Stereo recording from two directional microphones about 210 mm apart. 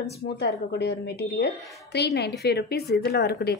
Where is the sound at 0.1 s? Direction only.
50° left (ahead or behind).